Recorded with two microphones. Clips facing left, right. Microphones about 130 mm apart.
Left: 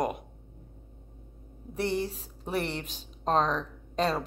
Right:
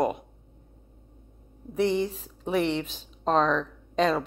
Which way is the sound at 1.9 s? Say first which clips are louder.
Right 4 dB; 40° left (ahead or behind).